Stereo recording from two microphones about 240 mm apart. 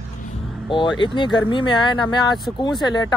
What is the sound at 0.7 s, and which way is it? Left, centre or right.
Speech, centre.